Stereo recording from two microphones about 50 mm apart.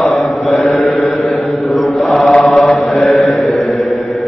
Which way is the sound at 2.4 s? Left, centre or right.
Centre.